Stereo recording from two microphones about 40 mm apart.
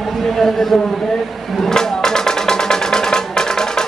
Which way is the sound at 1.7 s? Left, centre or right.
Centre.